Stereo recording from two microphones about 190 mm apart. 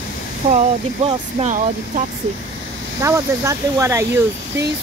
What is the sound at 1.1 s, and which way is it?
Speech, 35° right (ahead or behind).